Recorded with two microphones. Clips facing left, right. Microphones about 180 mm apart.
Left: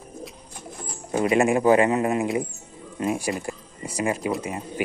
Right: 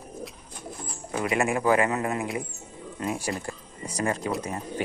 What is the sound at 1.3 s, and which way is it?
A man's voice, 25° left (ahead or behind).